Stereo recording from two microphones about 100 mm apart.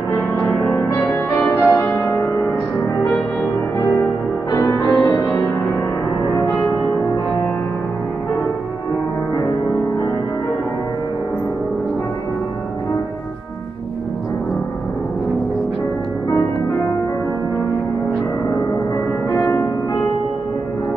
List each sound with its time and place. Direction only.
0.4 s music: 20° left (ahead or behind)
3.7 s music: 30° left (ahead or behind)